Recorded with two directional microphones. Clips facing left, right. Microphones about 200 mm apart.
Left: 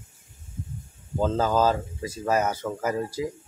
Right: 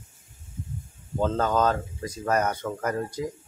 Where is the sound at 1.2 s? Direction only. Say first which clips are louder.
Left 1 dB; 5° left (ahead or behind).